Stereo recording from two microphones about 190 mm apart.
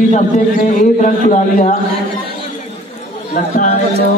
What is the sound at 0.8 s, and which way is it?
Speech, 45° left (ahead or behind).